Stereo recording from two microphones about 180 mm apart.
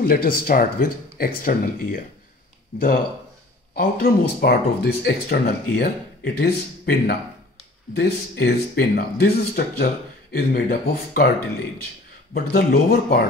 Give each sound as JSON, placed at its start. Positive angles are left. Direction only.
{"t": 0.0, "sound": "speech", "side_deg": 55}
{"t": 3.7, "sound": "speech", "side_deg": 60}
{"t": 12.4, "sound": "speech", "side_deg": 60}